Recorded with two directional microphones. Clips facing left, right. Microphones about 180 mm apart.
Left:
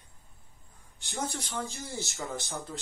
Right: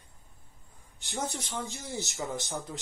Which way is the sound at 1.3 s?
20° right (ahead or behind).